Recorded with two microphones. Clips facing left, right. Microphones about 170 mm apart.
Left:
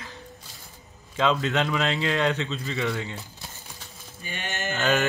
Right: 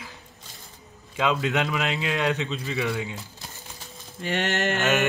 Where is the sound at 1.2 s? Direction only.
10° right (ahead or behind).